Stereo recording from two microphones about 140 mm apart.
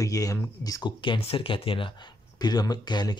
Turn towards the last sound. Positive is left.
turn(degrees=30)  # may be behind; listen again after turning